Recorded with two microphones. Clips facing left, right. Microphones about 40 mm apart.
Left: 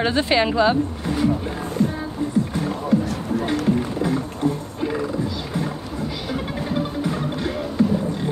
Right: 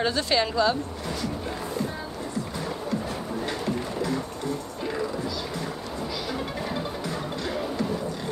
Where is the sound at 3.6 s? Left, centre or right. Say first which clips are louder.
Left 7 dB; left.